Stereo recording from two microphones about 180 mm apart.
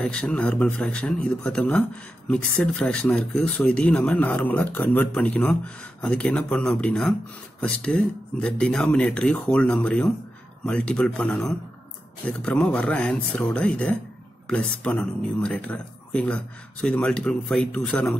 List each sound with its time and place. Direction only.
0.0 s speech: 5° left (ahead or behind)